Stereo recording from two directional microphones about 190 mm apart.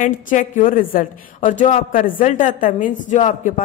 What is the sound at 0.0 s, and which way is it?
A woman's voice, 45° left (ahead or behind).